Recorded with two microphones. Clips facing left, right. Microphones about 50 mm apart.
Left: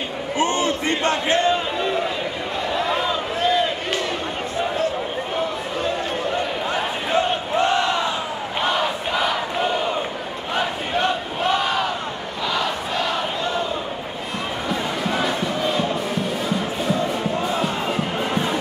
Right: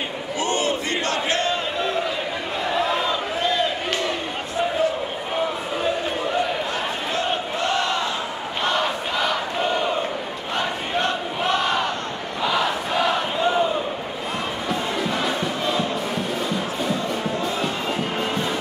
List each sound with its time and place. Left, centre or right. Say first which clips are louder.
0.4 s battle cry: left 3 dB; left
0.8 s crowd: left 3 dB; left
1.5 s a sound: left 2 dB; centre
5.3 s a sound: right 3 dB; centre
7.5 s battle cry: left 6 dB; centre
7.8 s crowd: left 2 dB; centre
8.6 s battle cry: even; centre
14.7 s music: left 1 dB; centre
17.1 s music: left 2 dB; centre